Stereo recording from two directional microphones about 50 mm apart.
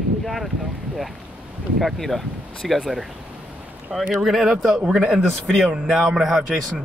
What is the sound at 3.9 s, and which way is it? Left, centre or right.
Speech, centre.